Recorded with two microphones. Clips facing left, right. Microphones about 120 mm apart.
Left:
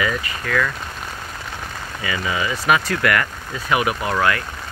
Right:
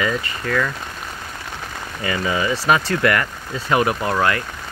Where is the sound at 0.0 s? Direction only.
30° right (ahead or behind).